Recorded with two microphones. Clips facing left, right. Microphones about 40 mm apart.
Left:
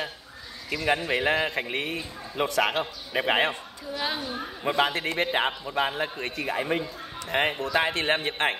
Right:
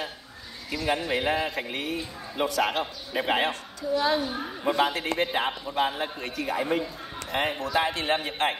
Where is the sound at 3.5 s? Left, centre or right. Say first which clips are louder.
Right 4 dB; centre.